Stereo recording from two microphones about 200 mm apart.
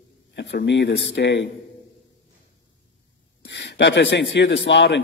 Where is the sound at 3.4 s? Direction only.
60° left (ahead or behind).